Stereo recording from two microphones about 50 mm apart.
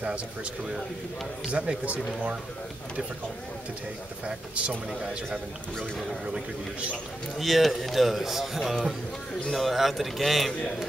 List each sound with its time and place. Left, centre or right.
1.5 s speech: right
7.3 s a man's voice: centre